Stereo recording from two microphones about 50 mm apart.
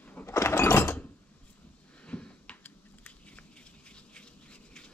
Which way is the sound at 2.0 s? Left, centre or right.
Left.